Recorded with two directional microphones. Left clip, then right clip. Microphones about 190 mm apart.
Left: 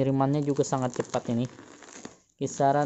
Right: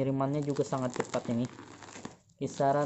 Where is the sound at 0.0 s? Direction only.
45° left (ahead or behind).